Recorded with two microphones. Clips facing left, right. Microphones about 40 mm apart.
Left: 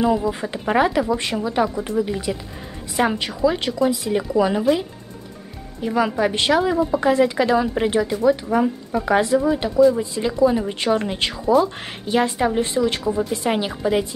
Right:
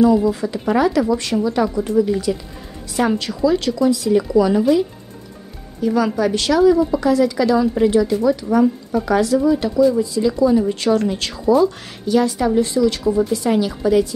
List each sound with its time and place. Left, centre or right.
0.3 s speech: left